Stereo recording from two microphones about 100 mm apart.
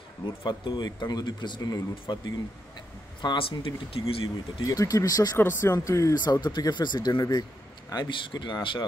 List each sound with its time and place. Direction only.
0.4 s speech: 55° left (ahead or behind)
3.2 s speech: 55° left (ahead or behind)
4.6 s speech: 35° left (ahead or behind)
5.4 s speech: 25° left (ahead or behind)
6.4 s speech: 45° left (ahead or behind)